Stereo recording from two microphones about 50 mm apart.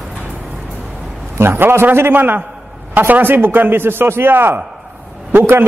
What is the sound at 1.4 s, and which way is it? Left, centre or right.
A man's voice, right.